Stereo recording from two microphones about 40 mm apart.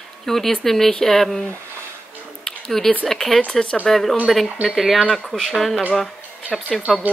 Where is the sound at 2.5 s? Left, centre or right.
Centre.